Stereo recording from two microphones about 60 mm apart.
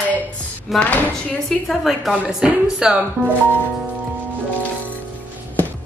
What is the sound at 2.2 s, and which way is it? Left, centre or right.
Speech, centre.